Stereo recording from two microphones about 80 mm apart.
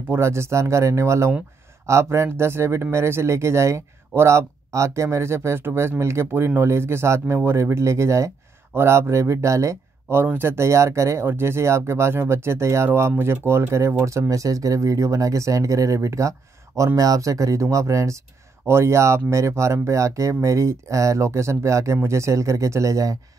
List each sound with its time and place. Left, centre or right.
0.1 s speech: right